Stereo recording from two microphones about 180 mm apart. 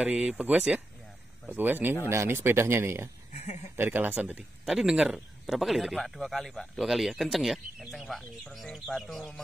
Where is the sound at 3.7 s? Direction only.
10° right (ahead or behind).